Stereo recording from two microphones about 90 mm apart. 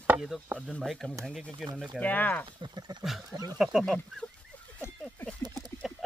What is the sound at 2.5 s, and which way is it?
Speech, 60° right (ahead or behind).